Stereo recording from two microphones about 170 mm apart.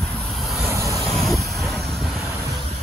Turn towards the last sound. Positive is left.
turn(degrees=0)  # may be behind; listen again after turning